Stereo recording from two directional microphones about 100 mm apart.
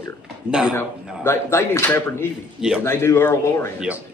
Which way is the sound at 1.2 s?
25° left (ahead or behind).